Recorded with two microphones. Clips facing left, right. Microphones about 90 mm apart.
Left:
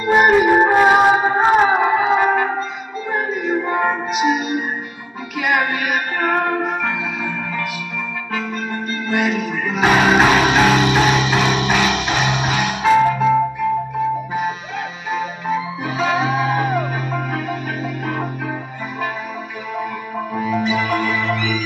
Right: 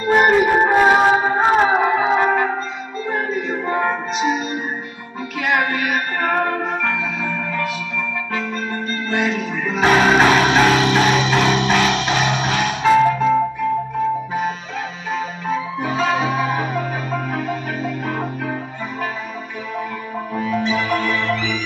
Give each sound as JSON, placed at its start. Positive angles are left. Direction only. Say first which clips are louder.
{"t": 0.0, "sound": "music", "louder": "left 1 dB", "side_deg": 10}
{"t": 9.1, "sound": "music", "louder": "left 2 dB", "side_deg": 5}
{"t": 20.3, "sound": "music", "louder": "left 1 dB", "side_deg": 5}